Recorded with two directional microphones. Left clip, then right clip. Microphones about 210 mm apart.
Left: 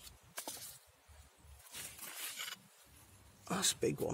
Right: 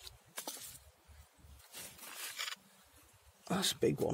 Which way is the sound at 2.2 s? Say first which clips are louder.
Right 4 dB; 20° right (ahead or behind).